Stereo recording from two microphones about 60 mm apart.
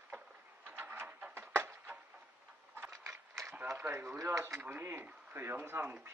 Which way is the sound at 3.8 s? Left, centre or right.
Right.